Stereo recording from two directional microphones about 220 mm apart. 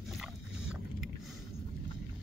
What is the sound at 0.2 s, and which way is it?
Wild animals, centre (ahead or behind).